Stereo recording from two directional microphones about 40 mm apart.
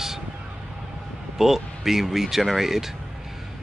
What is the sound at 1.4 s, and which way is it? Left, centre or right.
Speech, centre.